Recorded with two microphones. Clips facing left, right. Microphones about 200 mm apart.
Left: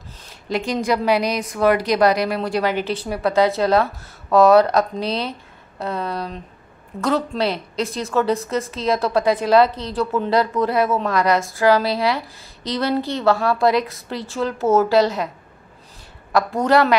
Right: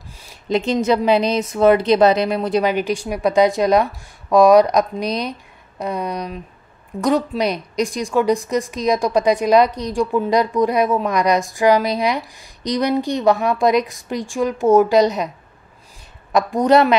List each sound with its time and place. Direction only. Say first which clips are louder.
0.5 s a woman's voice: right 4 dB; 20° right (ahead or behind)